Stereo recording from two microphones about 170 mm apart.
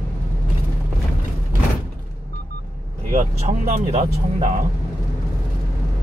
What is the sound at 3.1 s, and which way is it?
Speech, 45° right (ahead or behind).